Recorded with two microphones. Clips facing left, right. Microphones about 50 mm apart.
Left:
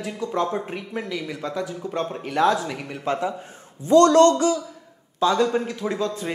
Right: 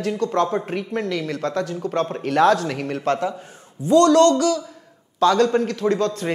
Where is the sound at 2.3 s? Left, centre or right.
Right.